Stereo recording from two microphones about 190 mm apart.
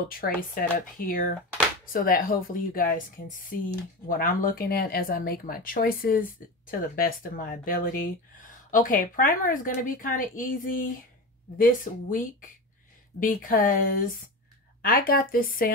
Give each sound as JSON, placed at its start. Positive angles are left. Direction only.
{"t": 0.1, "sound": "speech", "side_deg": 50}
{"t": 4.1, "sound": "speech", "side_deg": 45}